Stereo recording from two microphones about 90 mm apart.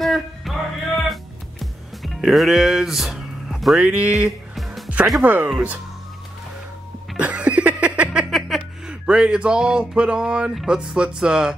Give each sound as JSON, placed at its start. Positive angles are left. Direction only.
{"t": 0.0, "sound": "music", "side_deg": 0}
{"t": 4.6, "sound": "music", "side_deg": 0}
{"t": 5.2, "sound": "speech", "side_deg": -20}
{"t": 7.2, "sound": "music", "side_deg": -15}
{"t": 10.6, "sound": "speech", "side_deg": -10}